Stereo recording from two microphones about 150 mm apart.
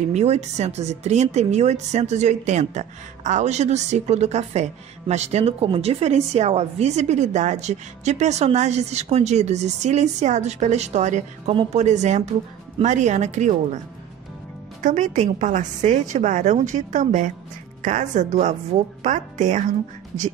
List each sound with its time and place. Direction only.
0.1 s a woman's voice: 45° right (ahead or behind)
14.8 s a woman's voice: 55° right (ahead or behind)